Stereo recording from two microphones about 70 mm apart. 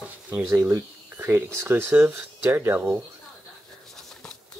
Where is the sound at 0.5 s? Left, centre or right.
Right.